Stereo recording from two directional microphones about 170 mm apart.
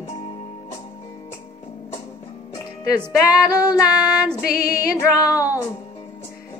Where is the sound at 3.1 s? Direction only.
20° left (ahead or behind).